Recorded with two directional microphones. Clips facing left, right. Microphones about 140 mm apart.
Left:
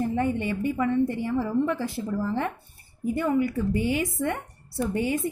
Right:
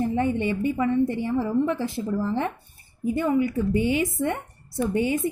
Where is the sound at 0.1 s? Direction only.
25° right (ahead or behind).